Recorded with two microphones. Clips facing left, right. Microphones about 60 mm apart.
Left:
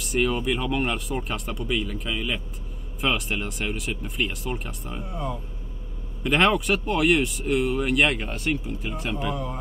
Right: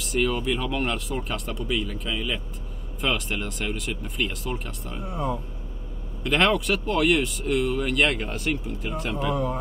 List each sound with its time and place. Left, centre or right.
0.0 s speech: centre
5.1 s speech: centre
6.2 s speech: centre